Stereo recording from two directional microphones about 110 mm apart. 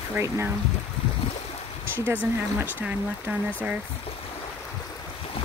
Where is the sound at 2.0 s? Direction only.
15° right (ahead or behind).